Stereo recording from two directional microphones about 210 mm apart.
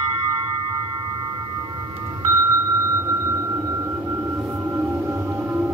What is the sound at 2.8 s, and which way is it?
Music, 15° right (ahead or behind).